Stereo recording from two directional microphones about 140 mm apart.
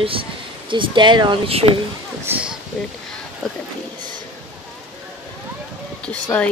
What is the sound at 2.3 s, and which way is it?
Speech, 10° right (ahead or behind).